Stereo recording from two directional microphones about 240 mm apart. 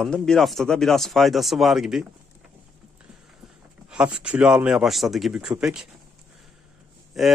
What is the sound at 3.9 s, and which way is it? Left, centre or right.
A man's voice, centre.